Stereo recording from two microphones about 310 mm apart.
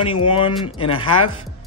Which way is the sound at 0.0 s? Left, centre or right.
Centre.